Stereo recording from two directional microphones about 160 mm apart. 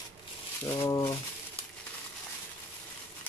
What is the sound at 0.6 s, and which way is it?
Speech, 20° left (ahead or behind).